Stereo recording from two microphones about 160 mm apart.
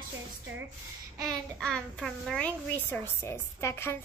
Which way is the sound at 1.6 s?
Centre (ahead or behind).